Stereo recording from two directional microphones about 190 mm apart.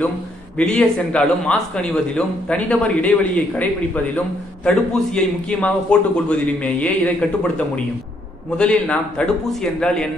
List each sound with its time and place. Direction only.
0.6 s a man's voice: 5° left (ahead or behind)